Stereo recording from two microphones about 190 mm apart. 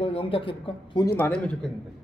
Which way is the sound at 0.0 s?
30° left (ahead or behind).